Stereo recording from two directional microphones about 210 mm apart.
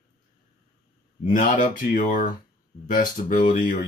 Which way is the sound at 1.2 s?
40° left (ahead or behind).